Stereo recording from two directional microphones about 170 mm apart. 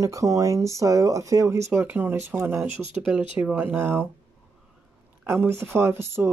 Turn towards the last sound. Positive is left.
turn(degrees=-15)  # may be behind; listen again after turning